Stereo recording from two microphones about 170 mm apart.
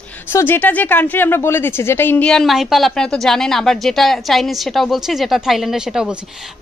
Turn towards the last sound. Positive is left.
turn(degrees=-5)  # may be behind; listen again after turning